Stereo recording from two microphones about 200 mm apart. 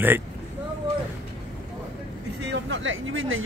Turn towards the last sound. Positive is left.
turn(degrees=-75)  # may be behind; listen again after turning